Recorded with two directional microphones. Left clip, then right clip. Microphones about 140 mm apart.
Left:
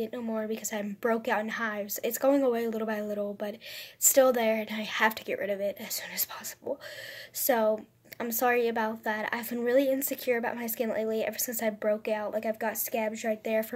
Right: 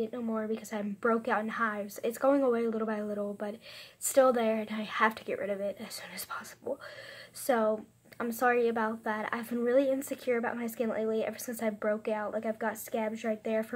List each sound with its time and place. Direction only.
0.0 s a woman's voice: 5° left (ahead or behind)